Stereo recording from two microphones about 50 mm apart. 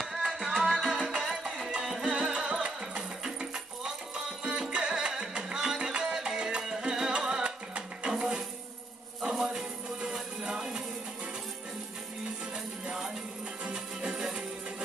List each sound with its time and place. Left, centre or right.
0.2 s music: centre
2.0 s music: centre
13.7 s music: centre